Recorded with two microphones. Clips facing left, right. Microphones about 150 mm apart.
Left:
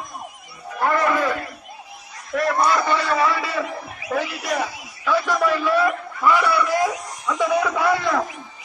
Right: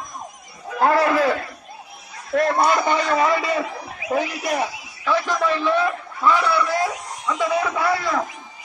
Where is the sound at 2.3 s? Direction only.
30° right (ahead or behind).